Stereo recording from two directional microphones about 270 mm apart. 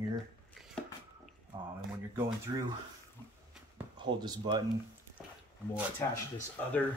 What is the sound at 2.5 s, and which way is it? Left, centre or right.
Speech, centre.